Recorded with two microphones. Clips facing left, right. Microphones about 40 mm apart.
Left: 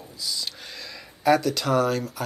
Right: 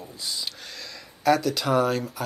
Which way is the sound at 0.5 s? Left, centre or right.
Centre.